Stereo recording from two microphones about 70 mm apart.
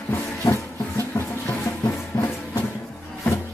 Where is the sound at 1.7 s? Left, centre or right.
Left.